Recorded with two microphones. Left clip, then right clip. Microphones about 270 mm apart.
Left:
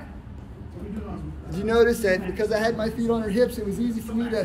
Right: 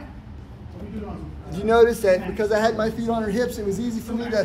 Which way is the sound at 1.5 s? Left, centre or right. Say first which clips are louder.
Right 3 dB; centre.